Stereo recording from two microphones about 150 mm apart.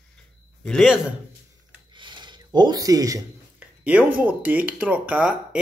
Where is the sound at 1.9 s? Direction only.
30° right (ahead or behind).